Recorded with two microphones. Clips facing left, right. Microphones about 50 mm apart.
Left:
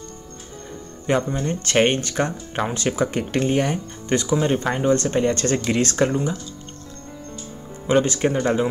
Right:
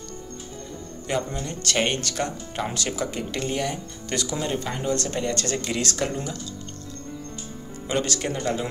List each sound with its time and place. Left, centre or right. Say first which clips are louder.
1.0 s speech: left 6 dB; left
7.8 s speech: left 8 dB; left